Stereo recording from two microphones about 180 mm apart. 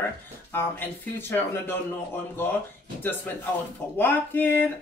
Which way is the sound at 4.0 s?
10° left (ahead or behind).